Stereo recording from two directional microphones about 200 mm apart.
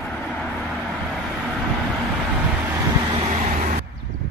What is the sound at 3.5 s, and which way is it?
Vehicle, 40° right (ahead or behind).